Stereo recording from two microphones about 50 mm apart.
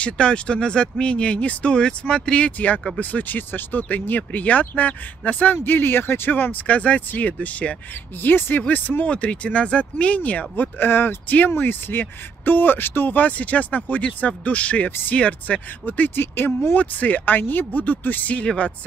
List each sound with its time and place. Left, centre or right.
0.0 s speech: left
2.5 s speech: left
8.2 s speech: left
9.1 s speech: left
10.5 s speech: left
11.5 s speech: left
13.2 s speech: left
14.9 s speech: left
15.1 s speech: left
16.7 s speech: left